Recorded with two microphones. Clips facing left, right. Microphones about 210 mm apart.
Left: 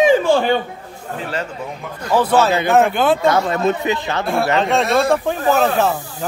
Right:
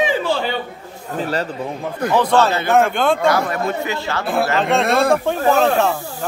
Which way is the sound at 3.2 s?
20° left (ahead or behind).